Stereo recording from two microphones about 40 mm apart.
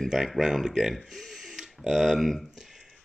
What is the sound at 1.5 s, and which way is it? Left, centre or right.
Tick, centre.